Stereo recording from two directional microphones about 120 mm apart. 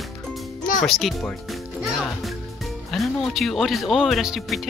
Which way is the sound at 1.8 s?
Centre (ahead or behind).